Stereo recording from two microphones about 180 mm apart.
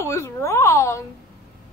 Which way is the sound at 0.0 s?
15° left (ahead or behind).